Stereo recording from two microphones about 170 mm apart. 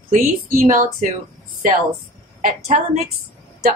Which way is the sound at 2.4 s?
45° right (ahead or behind).